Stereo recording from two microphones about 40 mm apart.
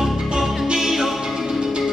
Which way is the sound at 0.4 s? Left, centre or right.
Centre.